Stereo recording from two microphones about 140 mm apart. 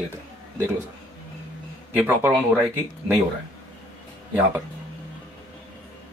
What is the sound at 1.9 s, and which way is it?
Speech, 15° right (ahead or behind).